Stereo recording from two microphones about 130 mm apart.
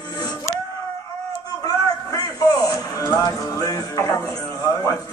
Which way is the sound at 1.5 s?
30° left (ahead or behind).